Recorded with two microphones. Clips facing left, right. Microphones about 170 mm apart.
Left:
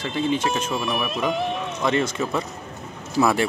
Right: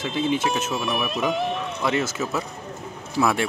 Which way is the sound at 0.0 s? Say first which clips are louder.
Even; 5° right (ahead or behind).